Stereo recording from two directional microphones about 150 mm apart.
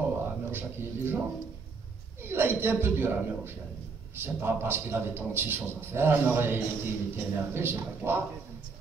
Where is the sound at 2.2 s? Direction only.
15° right (ahead or behind).